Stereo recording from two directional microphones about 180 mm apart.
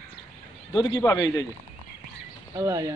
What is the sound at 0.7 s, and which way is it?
Speech, 25° left (ahead or behind).